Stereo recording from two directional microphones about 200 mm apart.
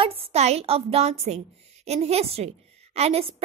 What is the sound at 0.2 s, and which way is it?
A woman's voice, 30° right (ahead or behind).